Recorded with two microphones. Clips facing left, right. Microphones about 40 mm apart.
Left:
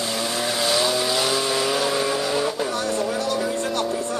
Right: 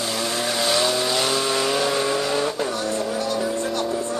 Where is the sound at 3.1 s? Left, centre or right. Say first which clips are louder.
Left 1 dB; left.